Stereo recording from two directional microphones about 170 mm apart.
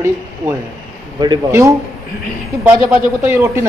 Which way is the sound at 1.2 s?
20° right (ahead or behind).